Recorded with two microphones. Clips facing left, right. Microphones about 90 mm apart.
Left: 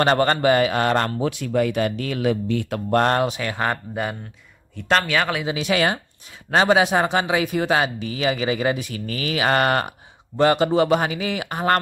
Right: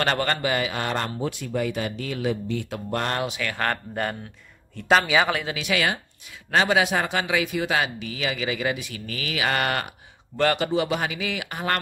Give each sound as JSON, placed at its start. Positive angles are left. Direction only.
{"t": 0.0, "sound": "a man's voice", "side_deg": 30}
{"t": 3.4, "sound": "a man's voice", "side_deg": 15}
{"t": 5.5, "sound": "speech", "side_deg": 35}
{"t": 10.3, "sound": "speech", "side_deg": 20}
{"t": 10.7, "sound": "speech", "side_deg": 40}